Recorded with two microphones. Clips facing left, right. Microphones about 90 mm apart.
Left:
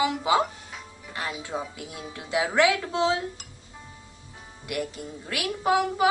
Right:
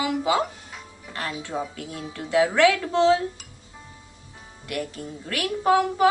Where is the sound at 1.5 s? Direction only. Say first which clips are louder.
Right 3 dB; 15° left (ahead or behind).